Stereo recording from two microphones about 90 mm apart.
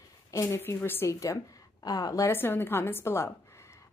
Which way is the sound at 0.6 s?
25° left (ahead or behind).